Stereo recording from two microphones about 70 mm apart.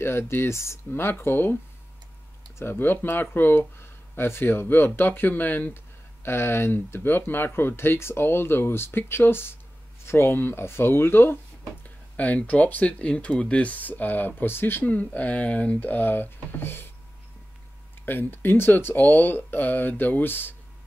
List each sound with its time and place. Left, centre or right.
0.0 s speech: left
2.6 s speech: left
11.8 s speech: left
18.0 s speech: left